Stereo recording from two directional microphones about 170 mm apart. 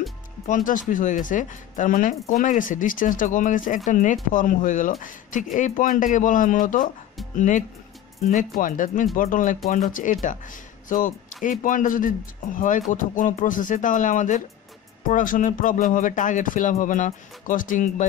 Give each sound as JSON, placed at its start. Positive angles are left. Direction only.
{"t": 0.7, "sound": "speech", "side_deg": 50}